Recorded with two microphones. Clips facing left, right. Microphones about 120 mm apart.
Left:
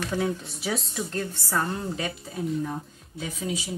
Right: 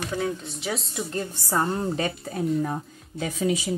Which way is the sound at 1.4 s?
25° right (ahead or behind).